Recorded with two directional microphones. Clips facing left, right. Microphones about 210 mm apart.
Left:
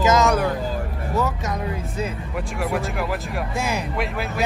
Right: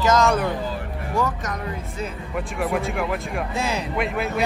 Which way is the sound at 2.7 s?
Centre (ahead or behind).